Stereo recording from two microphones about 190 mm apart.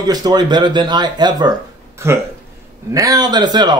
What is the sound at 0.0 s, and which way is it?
A man's voice, 20° right (ahead or behind).